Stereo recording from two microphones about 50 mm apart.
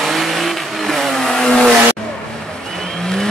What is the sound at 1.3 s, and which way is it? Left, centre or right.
Vehicle, centre.